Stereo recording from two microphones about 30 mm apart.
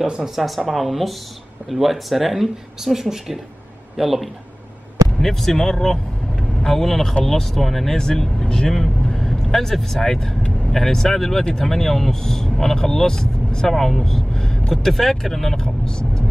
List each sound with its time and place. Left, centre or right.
0.6 s speech: centre
5.2 s speech: centre
14.7 s speech: centre